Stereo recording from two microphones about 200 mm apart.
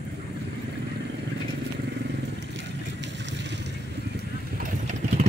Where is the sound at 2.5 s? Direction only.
60° right (ahead or behind).